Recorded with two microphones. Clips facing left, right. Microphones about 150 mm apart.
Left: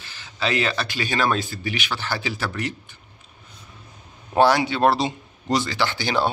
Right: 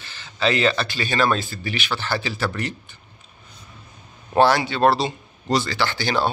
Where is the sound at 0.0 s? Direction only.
10° left (ahead or behind).